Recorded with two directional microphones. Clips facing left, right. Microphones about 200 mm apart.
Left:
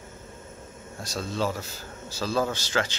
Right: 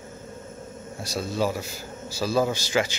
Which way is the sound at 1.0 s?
10° right (ahead or behind).